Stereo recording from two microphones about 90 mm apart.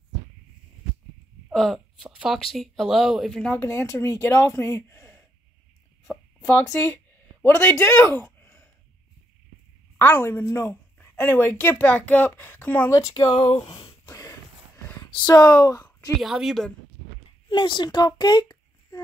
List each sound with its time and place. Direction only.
1.5 s speech: 5° left (ahead or behind)
3.6 s speech: 30° left (ahead or behind)
6.4 s speech: 25° left (ahead or behind)
9.9 s speech: 25° left (ahead or behind)
13.2 s speech: 60° left (ahead or behind)
14.1 s a sound: 40° left (ahead or behind)
15.0 s speech: 55° left (ahead or behind)
16.2 s speech: centre (ahead or behind)
17.5 s speech: 60° left (ahead or behind)